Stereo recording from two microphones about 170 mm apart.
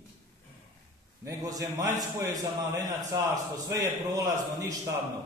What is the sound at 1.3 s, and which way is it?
A man's voice, 20° right (ahead or behind).